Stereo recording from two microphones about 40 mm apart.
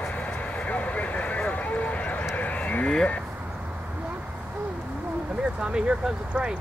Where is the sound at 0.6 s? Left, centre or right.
Left.